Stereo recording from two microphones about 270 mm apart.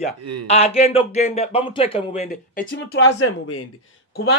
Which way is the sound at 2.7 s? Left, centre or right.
Left.